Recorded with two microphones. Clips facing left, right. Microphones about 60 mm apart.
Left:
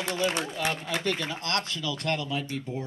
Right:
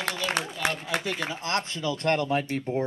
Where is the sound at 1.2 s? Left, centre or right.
Right.